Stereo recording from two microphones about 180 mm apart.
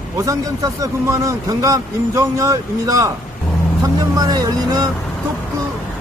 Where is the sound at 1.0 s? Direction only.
20° right (ahead or behind).